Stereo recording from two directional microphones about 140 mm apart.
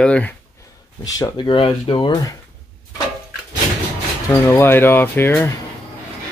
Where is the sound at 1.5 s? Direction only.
40° left (ahead or behind).